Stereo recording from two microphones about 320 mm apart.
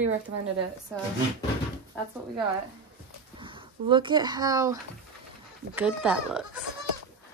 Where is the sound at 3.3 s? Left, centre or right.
Centre.